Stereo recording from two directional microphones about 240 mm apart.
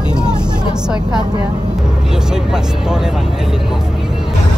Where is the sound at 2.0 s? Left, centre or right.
Centre.